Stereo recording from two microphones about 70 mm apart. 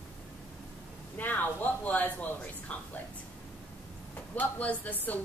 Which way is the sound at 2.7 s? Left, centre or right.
Centre.